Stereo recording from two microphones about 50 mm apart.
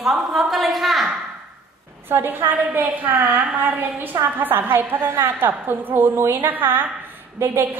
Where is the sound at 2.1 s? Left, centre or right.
Right.